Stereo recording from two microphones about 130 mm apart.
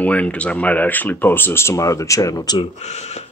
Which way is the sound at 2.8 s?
55° left (ahead or behind).